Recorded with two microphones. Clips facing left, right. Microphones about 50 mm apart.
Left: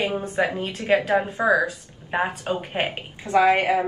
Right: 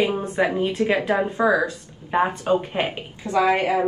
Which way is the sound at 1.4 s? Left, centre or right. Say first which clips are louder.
Right 1 dB; left.